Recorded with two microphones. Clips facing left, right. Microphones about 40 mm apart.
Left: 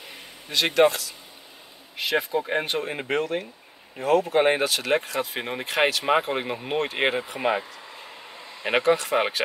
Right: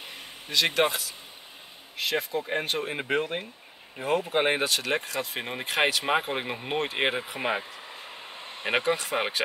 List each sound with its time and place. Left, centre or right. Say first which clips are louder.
0.5 s speech: left 4 dB; centre
2.0 s speech: left 4 dB; centre
8.4 s a sound: right 1 dB; right
8.6 s speech: left 5 dB; centre